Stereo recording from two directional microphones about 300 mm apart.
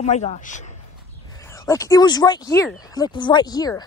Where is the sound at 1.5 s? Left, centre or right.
Centre.